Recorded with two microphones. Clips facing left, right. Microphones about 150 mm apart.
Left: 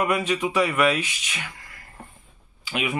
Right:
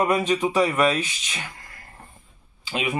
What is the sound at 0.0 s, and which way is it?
Speech, 30° right (ahead or behind).